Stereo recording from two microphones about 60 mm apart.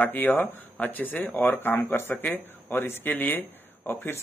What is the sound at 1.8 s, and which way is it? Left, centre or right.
Speech, left.